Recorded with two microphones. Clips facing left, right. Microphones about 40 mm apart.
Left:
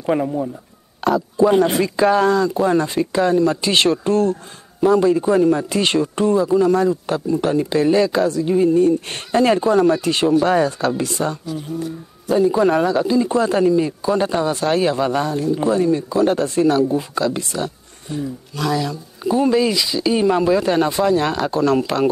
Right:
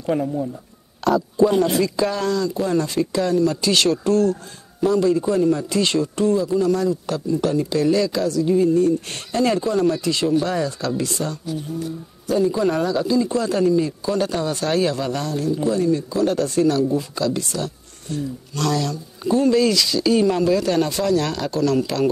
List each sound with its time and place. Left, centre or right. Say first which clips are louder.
0.0 s speech: left 3 dB; left
18.1 s speech: left 1 dB; centre; by 22.1 s left